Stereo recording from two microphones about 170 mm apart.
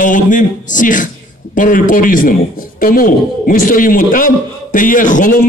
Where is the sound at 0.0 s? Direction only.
50° left (ahead or behind).